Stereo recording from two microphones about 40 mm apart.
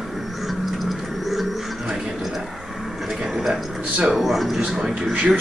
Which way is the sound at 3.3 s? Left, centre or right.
Centre.